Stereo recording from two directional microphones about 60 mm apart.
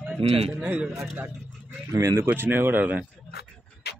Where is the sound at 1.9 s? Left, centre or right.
Right.